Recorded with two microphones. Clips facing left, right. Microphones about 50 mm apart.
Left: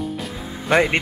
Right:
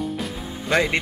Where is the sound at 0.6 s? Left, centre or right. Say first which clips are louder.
Left 3 dB; left.